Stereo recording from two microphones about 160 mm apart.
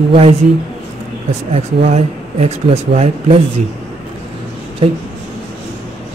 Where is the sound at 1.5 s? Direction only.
45° right (ahead or behind).